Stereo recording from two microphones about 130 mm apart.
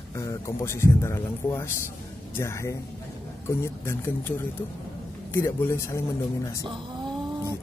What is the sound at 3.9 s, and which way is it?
Speech, 15° left (ahead or behind).